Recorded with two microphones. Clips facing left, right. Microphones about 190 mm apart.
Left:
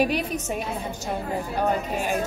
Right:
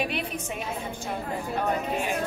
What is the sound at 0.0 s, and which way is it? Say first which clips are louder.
Speech: left 6 dB; 40° left (ahead or behind).